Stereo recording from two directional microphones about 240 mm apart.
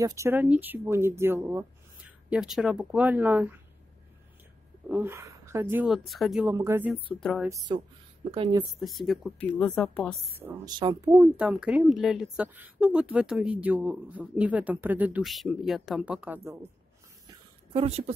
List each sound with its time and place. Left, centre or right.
0.0 s speech: centre
4.8 s speech: centre
7.2 s speech: centre
7.4 s a woman's voice: centre
8.8 s speech: centre
10.4 s speech: centre
17.3 s a sound: right